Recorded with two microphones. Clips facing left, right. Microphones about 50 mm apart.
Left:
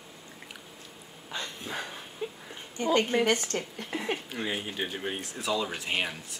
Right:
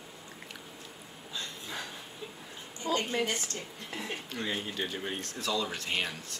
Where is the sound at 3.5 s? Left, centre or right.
Left.